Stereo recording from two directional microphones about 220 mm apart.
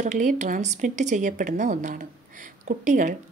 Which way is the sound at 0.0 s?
35° right (ahead or behind).